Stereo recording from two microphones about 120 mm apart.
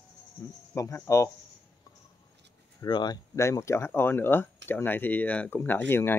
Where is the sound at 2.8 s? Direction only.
40° left (ahead or behind).